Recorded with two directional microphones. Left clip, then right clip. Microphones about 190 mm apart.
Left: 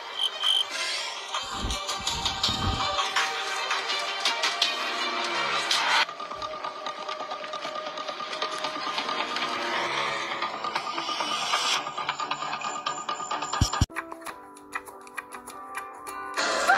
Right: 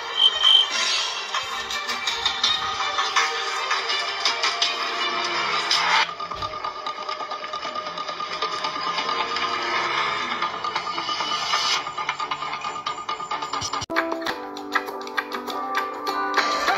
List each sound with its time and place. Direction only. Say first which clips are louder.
0.2 s cricket: right 9 dB; 35° left (ahead or behind)
1.9 s music: right 5 dB; 35° left (ahead or behind)
8.4 s sewing machine: right 5 dB; 35° left (ahead or behind)
15.7 s music: right 10 dB; 40° left (ahead or behind)
16.3 s music: right 1 dB; 30° left (ahead or behind)